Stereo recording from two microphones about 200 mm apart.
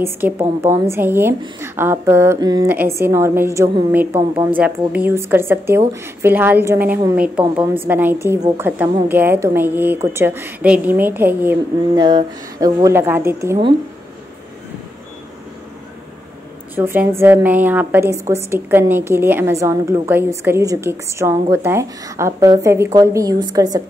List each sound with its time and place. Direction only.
0.0 s a woman's voice: 10° right (ahead or behind)
16.7 s a woman's voice: 10° right (ahead or behind)